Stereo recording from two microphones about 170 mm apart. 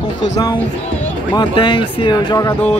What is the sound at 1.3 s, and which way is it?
Speech, 30° left (ahead or behind).